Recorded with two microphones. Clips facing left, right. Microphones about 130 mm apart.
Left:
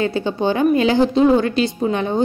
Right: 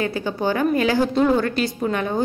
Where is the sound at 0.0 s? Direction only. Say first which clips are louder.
Left 4 dB; 25° left (ahead or behind).